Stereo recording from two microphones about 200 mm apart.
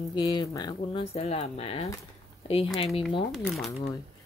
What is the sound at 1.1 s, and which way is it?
Speech, 30° left (ahead or behind).